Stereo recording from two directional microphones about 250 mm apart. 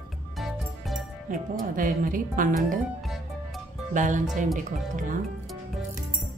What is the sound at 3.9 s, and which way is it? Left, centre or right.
A woman's voice, right.